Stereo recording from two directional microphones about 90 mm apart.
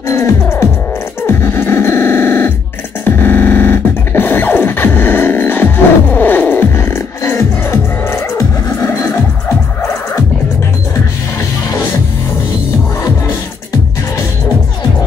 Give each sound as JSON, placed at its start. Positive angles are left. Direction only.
{"t": 0.1, "sound": "music", "side_deg": 30}
{"t": 1.2, "sound": "cacophony", "side_deg": 25}
{"t": 3.2, "sound": "a sound", "side_deg": 25}
{"t": 6.1, "sound": "music", "side_deg": 20}